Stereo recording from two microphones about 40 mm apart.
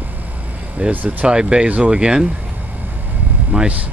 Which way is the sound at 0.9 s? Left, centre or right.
Right.